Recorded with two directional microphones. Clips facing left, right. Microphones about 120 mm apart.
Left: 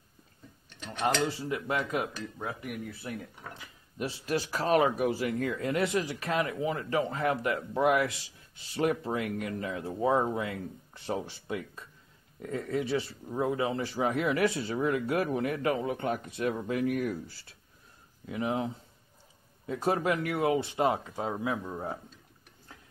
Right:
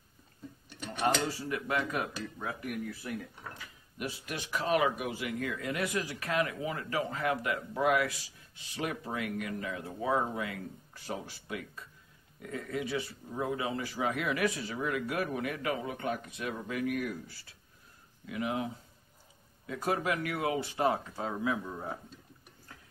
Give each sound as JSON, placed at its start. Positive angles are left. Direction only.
{"t": 0.7, "sound": "a sound", "side_deg": -10}
{"t": 1.5, "sound": "speech", "side_deg": 20}
{"t": 3.0, "sound": "speech", "side_deg": 30}